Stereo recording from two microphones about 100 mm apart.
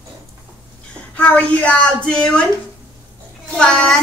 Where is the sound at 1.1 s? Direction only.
15° left (ahead or behind).